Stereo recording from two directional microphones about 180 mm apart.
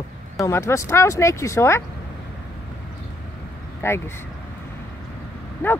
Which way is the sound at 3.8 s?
15° left (ahead or behind).